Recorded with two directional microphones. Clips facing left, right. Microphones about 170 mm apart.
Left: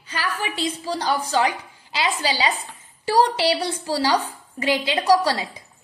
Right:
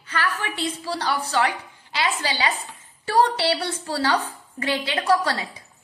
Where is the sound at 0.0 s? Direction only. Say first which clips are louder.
Even; 10° left (ahead or behind).